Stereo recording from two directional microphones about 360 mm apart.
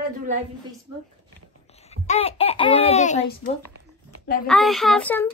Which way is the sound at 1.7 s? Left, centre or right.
Centre.